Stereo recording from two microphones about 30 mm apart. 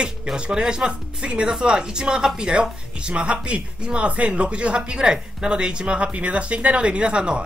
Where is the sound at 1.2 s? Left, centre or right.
Right.